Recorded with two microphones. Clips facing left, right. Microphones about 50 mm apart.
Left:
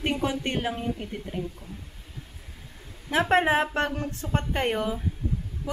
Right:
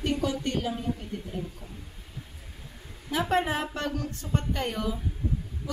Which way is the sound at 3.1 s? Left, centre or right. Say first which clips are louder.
Left 5 dB; left.